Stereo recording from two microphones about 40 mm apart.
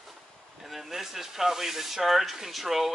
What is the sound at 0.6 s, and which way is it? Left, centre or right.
Speech, centre.